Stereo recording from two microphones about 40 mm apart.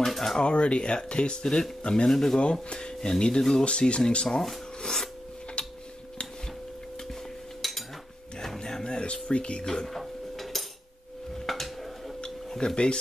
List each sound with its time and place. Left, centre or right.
0.0 s a sound: centre
0.4 s speech: left; by 2.4 s centre
2.4 s speech: left
3.6 s speech: left
4.8 s filing: centre
5.6 s tick-tock: left
7.6 s cutlery: centre
8.4 s a sound: centre
9.7 s cutlery: centre
11.4 s a sound: centre
12.4 s speech: centre